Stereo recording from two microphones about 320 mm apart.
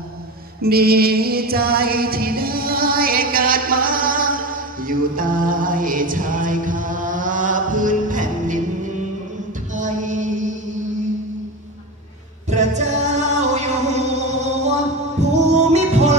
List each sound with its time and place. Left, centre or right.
0.6 s music: right
9.8 s music: right
12.4 s music: right